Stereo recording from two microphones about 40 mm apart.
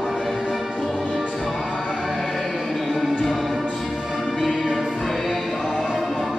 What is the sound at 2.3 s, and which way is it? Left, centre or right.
Music, centre.